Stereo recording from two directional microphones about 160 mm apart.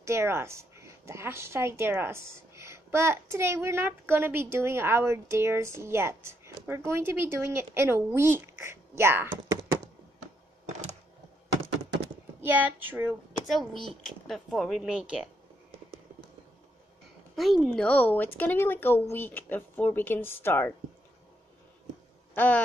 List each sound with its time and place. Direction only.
0.0 s a woman's voice: 15° right (ahead or behind)
12.4 s a woman's voice: 10° right (ahead or behind)
13.5 s speech: centre (ahead or behind)
17.4 s speech: centre (ahead or behind)
22.3 s speech: 10° left (ahead or behind)